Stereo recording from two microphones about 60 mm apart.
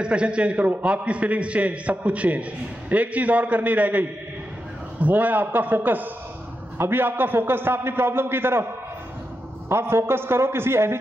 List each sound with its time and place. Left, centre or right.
0.0 s a man's voice: centre; by 8.6 s right
9.7 s a man's voice: right